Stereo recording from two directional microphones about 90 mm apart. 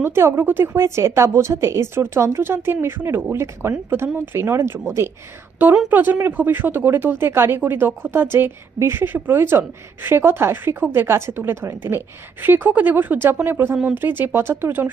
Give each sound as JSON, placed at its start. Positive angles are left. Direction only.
{"t": 0.0, "sound": "speech", "side_deg": -25}